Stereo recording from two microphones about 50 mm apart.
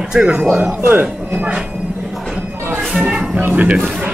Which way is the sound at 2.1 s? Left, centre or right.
Centre.